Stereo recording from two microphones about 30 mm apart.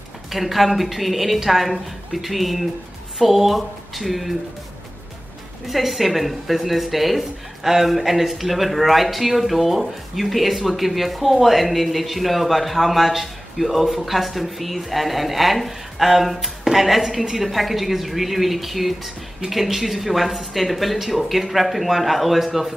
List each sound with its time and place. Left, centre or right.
0.3 s speech: centre
5.7 s speech: centre